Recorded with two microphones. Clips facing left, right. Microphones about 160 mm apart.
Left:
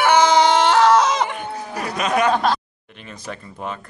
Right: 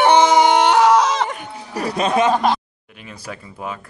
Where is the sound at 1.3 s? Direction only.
35° right (ahead or behind).